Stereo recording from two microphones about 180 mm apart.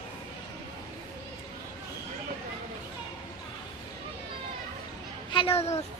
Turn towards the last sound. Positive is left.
turn(degrees=35)  # may be behind; listen again after turning